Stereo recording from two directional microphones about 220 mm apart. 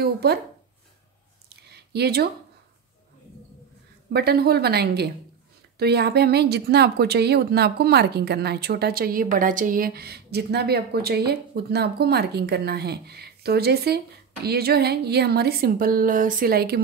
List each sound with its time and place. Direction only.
0.0 s speech: 45° right (ahead or behind)
1.5 s a sound: 45° right (ahead or behind)
4.1 s speech: 45° right (ahead or behind)